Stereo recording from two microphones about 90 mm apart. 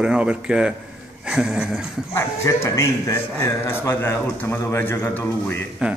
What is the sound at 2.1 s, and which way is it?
A man's voice, 35° left (ahead or behind).